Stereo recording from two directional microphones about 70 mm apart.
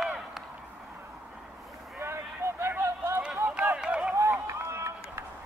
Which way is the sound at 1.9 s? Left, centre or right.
Right.